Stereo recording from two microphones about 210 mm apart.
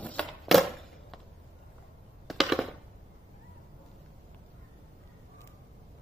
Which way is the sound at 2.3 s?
Centre (ahead or behind).